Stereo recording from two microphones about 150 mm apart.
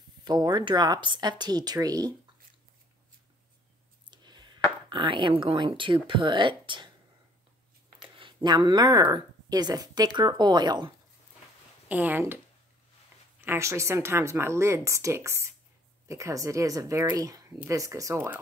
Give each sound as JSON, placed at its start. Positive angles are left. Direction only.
{"t": 0.2, "sound": "speech", "side_deg": -30}
{"t": 4.1, "sound": "a sound", "side_deg": -30}
{"t": 6.0, "sound": "speech", "side_deg": -30}
{"t": 8.0, "sound": "a sound", "side_deg": -35}
{"t": 9.1, "sound": "speech", "side_deg": -25}
{"t": 11.9, "sound": "speech", "side_deg": -10}
{"t": 13.4, "sound": "speech", "side_deg": -15}